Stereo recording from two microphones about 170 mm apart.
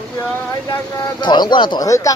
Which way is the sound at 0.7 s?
25° left (ahead or behind).